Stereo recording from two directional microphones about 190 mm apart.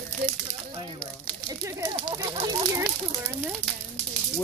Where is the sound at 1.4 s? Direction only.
20° right (ahead or behind).